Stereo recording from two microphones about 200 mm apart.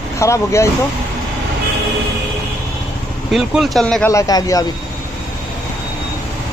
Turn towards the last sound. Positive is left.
turn(degrees=20)  # may be behind; listen again after turning